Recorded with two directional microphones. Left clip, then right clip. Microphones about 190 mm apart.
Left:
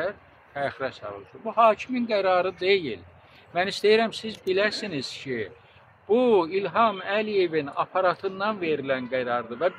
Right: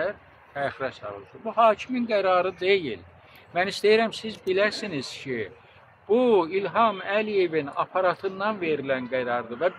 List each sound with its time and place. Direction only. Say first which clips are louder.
0.6 s a man's voice: even; 10° left (ahead or behind)